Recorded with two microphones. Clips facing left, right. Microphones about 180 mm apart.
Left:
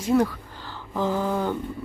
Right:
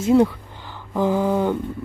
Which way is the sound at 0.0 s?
25° right (ahead or behind).